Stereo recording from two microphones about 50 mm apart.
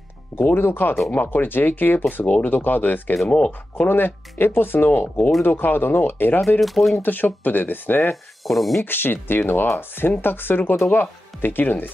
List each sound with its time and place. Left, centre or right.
0.4 s speech: left
2.2 s speech: left
3.3 s speech: left
3.9 s speech: left
6.6 s speech: centre
7.0 s speech: left
8.5 s speech: centre
8.8 s speech: left